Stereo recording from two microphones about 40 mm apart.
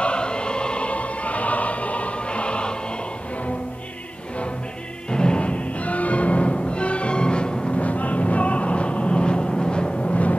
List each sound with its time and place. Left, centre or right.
0.0 s music: left
5.1 s music: left
7.8 s train: left